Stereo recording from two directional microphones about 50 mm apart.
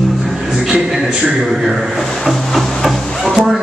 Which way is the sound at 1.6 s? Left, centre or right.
Centre.